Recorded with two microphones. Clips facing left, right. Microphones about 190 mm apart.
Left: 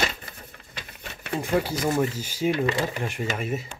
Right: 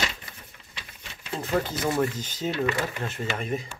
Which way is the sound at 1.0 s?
60° left (ahead or behind).